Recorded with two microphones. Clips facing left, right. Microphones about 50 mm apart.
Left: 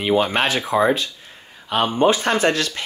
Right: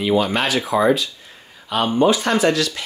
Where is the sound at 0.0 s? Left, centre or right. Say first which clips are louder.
Even; left.